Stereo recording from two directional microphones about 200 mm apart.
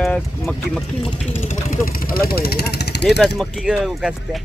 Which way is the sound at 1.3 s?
40° left (ahead or behind).